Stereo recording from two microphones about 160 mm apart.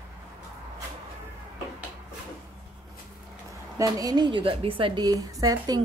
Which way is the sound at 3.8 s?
25° right (ahead or behind).